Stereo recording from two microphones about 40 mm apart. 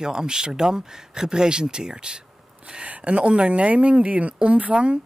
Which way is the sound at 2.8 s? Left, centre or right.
Right.